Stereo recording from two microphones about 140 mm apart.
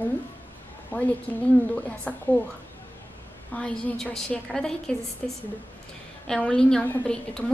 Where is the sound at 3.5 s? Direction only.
5° left (ahead or behind).